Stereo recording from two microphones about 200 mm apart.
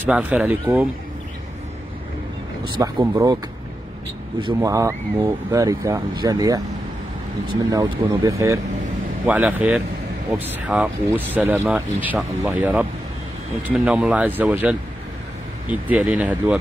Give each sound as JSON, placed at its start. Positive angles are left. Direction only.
{"t": 0.0, "sound": "speech", "side_deg": -5}
{"t": 2.8, "sound": "speech", "side_deg": -20}
{"t": 4.6, "sound": "speech", "side_deg": -15}
{"t": 7.7, "sound": "speech", "side_deg": -20}